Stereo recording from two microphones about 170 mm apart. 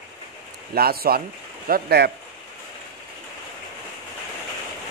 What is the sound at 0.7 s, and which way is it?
Speech, 60° right (ahead or behind).